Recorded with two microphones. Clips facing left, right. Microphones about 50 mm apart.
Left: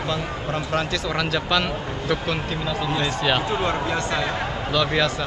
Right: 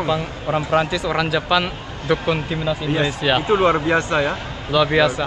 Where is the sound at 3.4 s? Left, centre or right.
Right.